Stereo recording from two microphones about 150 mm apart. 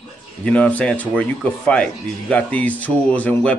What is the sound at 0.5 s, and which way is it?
Speech, 10° left (ahead or behind).